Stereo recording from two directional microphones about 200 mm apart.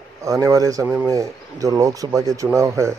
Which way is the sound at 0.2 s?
15° right (ahead or behind).